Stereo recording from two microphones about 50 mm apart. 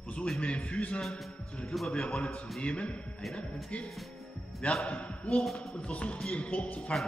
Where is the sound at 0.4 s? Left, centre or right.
Left.